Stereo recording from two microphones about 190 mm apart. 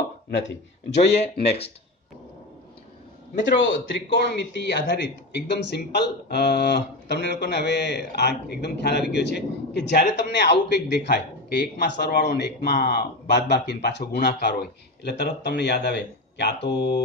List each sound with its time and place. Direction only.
0.4 s speech: 75° left (ahead or behind)
3.3 s speech: 70° left (ahead or behind)